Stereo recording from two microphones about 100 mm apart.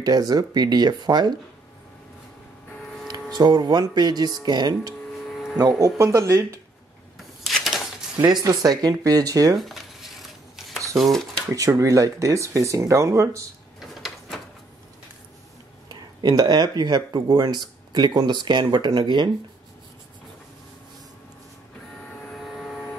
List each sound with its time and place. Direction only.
0.0 s speech: 40° right (ahead or behind)
3.1 s speech: 40° right (ahead or behind)
7.2 s a sound: centre (ahead or behind)
8.2 s speech: 40° right (ahead or behind)
9.6 s a sound: centre (ahead or behind)
11.0 s speech: 5° left (ahead or behind)
11.5 s speech: 35° right (ahead or behind)
13.7 s sliding door: centre (ahead or behind)
15.9 s speech: 45° right (ahead or behind)
22.3 s vehicle: centre (ahead or behind)